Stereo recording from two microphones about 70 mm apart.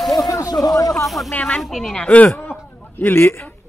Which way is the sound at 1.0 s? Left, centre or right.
Centre.